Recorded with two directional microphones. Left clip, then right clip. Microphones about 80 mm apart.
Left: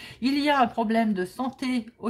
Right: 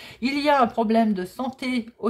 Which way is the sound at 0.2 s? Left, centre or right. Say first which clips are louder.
Right 3 dB; right.